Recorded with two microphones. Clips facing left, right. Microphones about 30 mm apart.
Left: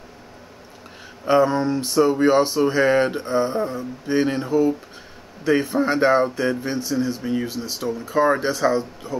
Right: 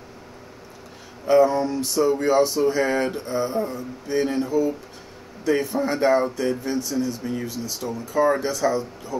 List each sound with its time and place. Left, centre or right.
1.2 s speech: left